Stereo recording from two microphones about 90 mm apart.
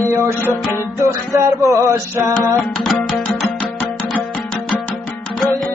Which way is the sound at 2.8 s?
5° left (ahead or behind).